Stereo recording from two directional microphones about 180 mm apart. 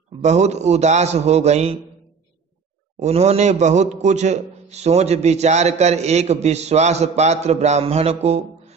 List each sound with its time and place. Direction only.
0.2 s a man's voice: 40° right (ahead or behind)
3.0 s a man's voice: 35° right (ahead or behind)